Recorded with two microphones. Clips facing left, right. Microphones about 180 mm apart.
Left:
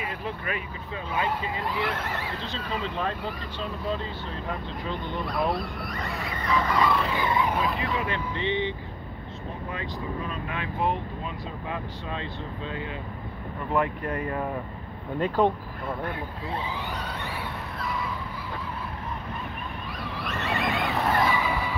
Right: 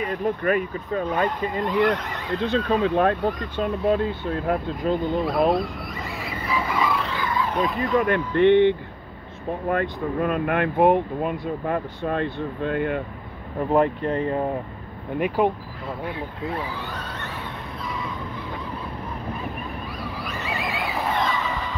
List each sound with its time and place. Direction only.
0.1 s speech: 45° right (ahead or behind)
1.5 s speech: 5° left (ahead or behind)
2.3 s speech: 55° right (ahead or behind)
5.1 s speech: centre (ahead or behind)
7.2 s vehicle: 20° left (ahead or behind)
7.5 s speech: centre (ahead or behind)
7.9 s speech: 45° right (ahead or behind)
8.4 s speech: 60° right (ahead or behind)
13.6 s speech: 40° right (ahead or behind)
15.1 s speech: 10° right (ahead or behind)
20.2 s a sound: centre (ahead or behind)